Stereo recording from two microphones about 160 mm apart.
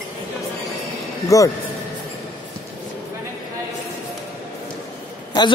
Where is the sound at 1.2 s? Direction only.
20° left (ahead or behind).